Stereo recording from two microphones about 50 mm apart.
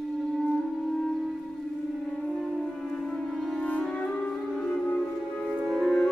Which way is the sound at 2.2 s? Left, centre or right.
Centre.